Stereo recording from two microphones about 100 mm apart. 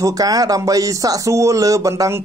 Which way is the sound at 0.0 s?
40° right (ahead or behind).